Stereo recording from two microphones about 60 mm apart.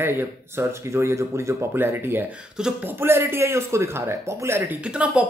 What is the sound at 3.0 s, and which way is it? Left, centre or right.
Speech, right.